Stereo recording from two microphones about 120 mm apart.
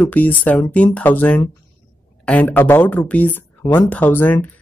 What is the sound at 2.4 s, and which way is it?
Speech, 20° left (ahead or behind).